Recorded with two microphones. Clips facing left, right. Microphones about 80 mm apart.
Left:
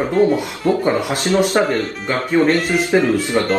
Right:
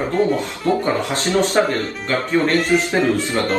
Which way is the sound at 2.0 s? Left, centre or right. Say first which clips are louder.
Left 3 dB; centre.